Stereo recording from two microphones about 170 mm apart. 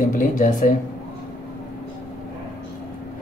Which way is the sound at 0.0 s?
50° left (ahead or behind).